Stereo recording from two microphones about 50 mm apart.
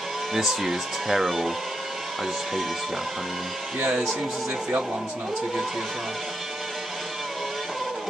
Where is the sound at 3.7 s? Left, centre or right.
Right.